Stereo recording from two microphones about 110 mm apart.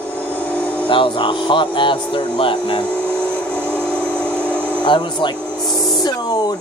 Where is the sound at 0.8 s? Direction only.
50° left (ahead or behind).